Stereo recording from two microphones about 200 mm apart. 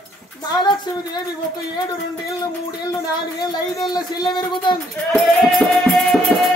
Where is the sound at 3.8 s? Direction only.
20° left (ahead or behind).